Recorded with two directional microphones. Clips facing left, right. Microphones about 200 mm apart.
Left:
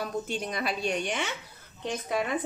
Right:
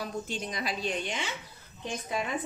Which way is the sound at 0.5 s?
60° left (ahead or behind).